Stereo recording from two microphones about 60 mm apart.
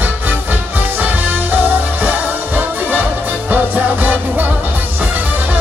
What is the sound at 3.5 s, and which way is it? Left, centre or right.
Music, right.